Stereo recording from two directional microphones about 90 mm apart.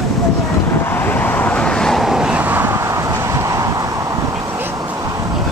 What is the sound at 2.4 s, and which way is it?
Vehicle, 25° right (ahead or behind).